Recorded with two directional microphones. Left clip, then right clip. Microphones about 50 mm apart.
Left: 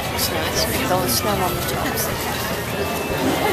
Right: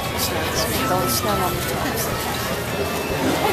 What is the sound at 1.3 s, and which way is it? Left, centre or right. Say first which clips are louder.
Speech: even; centre.